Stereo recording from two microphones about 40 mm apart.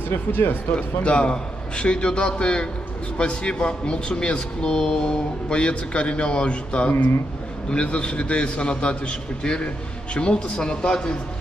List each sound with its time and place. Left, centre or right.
0.1 s speech: left
0.7 s speech: left